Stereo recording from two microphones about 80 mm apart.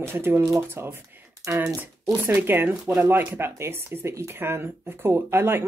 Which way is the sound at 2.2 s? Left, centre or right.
Right.